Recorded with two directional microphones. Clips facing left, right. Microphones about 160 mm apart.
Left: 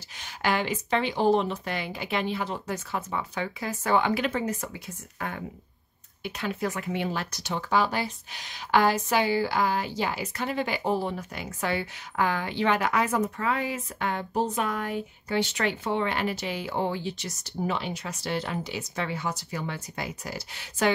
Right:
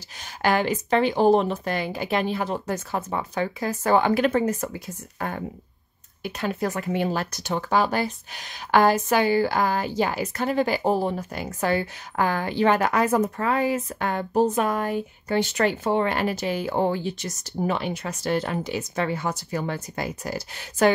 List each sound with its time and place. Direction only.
0.2 s speech: 45° right (ahead or behind)